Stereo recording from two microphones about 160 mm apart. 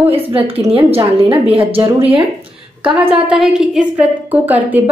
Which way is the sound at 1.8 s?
15° right (ahead or behind).